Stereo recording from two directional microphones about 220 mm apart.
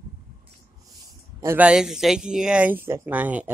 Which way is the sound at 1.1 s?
15° right (ahead or behind).